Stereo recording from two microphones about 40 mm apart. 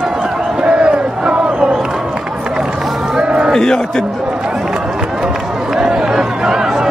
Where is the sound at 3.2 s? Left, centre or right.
Right.